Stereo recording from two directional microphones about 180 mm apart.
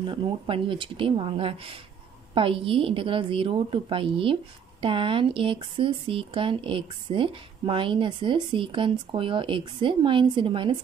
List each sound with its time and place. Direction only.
0.0 s speech: 30° right (ahead or behind)